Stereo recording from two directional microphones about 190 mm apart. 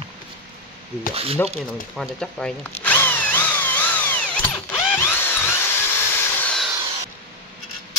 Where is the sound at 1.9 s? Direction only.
Centre (ahead or behind).